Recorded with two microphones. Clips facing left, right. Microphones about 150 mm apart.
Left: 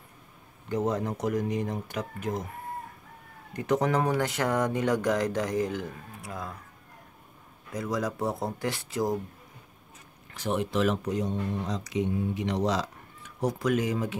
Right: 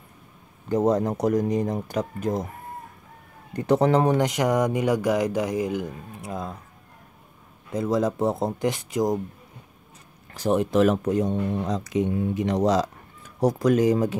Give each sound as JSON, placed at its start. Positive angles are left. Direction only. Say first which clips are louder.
{"t": 0.7, "sound": "speech", "louder": "right 7 dB", "side_deg": -40}
{"t": 3.5, "sound": "speech", "louder": "right 6 dB", "side_deg": -30}
{"t": 7.7, "sound": "speech", "louder": "right 7 dB", "side_deg": -25}
{"t": 10.3, "sound": "speech", "louder": "right 7 dB", "side_deg": -40}